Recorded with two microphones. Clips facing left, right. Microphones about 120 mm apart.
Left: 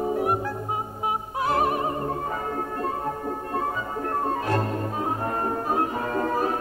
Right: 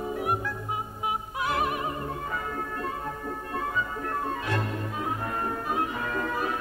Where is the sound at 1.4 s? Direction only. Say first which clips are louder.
Left 6 dB; 35° left (ahead or behind).